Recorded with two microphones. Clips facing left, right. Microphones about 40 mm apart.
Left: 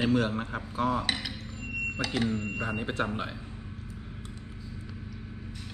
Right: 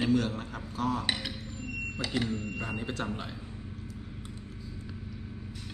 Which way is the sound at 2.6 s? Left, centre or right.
Centre.